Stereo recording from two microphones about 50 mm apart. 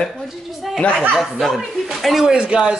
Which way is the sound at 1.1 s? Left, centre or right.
Centre.